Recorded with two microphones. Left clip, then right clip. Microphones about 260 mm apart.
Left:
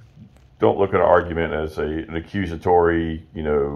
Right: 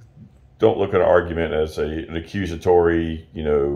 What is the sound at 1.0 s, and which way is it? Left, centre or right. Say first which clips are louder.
Speech: right 1 dB; left.